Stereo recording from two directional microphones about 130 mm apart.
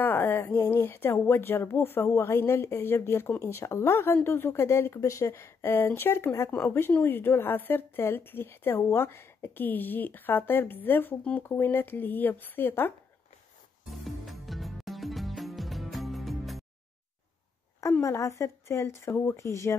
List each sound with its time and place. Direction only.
0.0 s speech: 15° left (ahead or behind)
14.0 s music: centre (ahead or behind)
18.0 s a woman's voice: 25° left (ahead or behind)